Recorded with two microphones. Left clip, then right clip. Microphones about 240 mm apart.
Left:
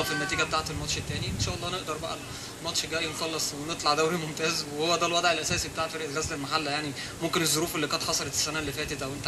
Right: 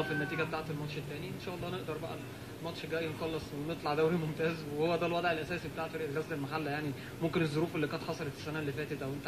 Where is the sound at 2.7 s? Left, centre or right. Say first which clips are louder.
Left 7 dB; centre.